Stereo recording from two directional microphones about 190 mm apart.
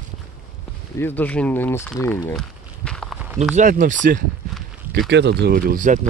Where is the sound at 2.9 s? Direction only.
5° left (ahead or behind).